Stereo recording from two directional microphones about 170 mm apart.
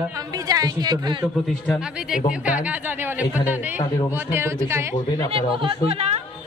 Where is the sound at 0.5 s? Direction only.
20° right (ahead or behind).